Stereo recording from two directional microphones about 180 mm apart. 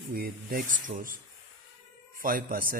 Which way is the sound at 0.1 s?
55° right (ahead or behind).